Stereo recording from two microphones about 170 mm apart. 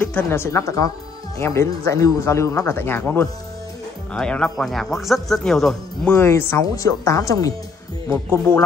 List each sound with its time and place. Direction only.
0.0 s speech: 10° left (ahead or behind)
6.1 s a woman's voice: 15° left (ahead or behind)